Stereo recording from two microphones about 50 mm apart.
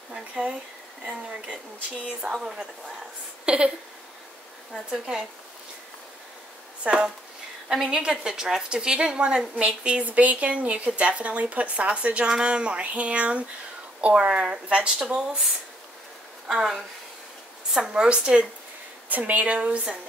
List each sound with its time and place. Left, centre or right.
0.1 s speech: right
2.0 s a woman's voice: centre
4.8 s a woman's voice: centre
6.8 s speech: centre
7.7 s a woman's voice: centre
8.0 s a woman's voice: centre
15.1 s a woman's voice: centre
18.0 s speech: right
19.0 s speech: right